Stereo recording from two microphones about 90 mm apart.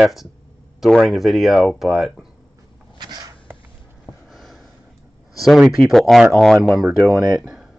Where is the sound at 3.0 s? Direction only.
50° right (ahead or behind).